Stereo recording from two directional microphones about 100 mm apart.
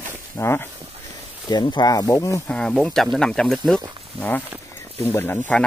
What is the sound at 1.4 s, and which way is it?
Speech, 45° left (ahead or behind).